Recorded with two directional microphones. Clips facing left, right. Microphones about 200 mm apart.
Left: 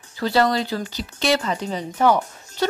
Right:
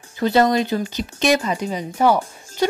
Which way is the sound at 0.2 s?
20° right (ahead or behind).